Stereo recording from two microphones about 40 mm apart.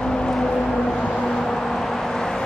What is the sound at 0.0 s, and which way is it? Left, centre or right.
Vehicle, left.